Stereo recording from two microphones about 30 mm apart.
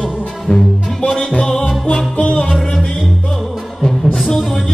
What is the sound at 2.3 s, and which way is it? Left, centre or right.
Music, left.